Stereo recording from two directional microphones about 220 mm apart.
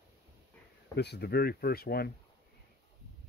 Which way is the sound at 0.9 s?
50° left (ahead or behind).